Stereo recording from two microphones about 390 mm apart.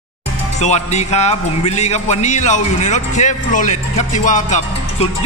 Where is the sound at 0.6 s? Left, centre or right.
Centre.